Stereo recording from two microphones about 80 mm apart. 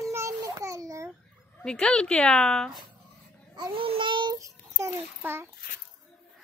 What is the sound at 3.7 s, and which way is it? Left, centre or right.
Speech, right.